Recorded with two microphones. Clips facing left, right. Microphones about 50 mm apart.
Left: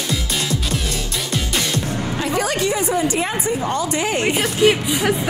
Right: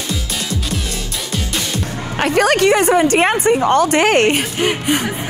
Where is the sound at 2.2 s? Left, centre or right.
Right.